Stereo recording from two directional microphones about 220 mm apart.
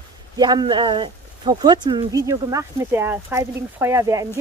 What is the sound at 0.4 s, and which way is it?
Speech, 20° right (ahead or behind).